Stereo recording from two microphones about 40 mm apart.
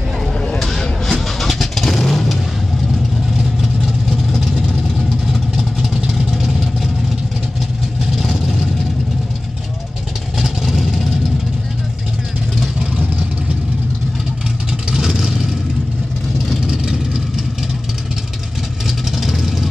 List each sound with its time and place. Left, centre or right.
0.6 s vehicle: centre
5.3 s vehicle: centre
8.0 s vehicle: centre
10.4 s vehicle: centre
12.7 s vehicle: right
14.7 s vehicle: centre
16.6 s vehicle: centre
18.9 s vehicle: centre